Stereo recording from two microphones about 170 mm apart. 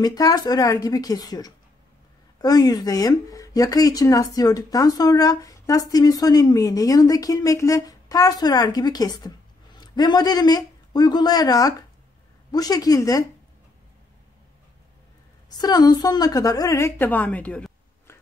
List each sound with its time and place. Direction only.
0.0 s speech: 25° left (ahead or behind)
15.5 s speech: 25° left (ahead or behind); by 18.1 s 5° left (ahead or behind)